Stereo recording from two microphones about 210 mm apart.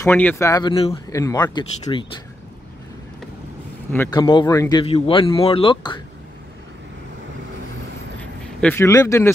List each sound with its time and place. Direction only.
0.0 s speech: 10° left (ahead or behind)
3.9 s speech: 15° left (ahead or behind)
8.2 s speech: 5° left (ahead or behind)